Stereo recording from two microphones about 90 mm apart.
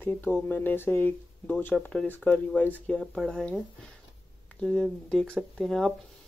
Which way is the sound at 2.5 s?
10° left (ahead or behind).